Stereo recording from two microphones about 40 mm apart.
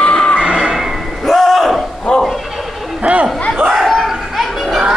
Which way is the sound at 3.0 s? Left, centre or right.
Right.